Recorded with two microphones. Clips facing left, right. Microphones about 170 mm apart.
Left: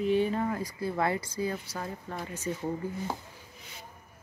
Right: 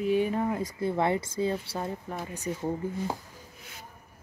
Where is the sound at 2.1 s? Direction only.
15° right (ahead or behind).